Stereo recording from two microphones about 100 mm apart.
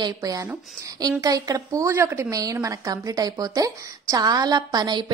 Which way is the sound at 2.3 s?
35° right (ahead or behind).